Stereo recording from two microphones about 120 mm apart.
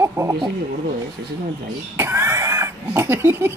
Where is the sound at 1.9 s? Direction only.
20° right (ahead or behind).